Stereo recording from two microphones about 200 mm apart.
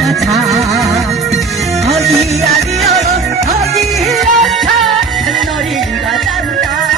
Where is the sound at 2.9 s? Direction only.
35° right (ahead or behind).